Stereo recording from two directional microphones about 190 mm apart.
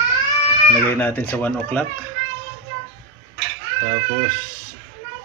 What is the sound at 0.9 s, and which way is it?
Speech, 10° left (ahead or behind).